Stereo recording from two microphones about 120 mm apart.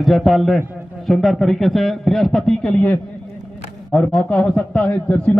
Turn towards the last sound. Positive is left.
turn(degrees=10)  # may be behind; listen again after turning